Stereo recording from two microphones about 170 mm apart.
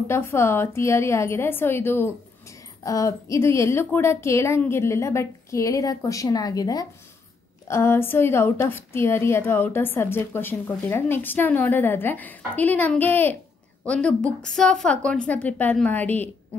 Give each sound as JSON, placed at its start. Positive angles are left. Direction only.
{"t": 0.1, "sound": "a woman's voice", "side_deg": 15}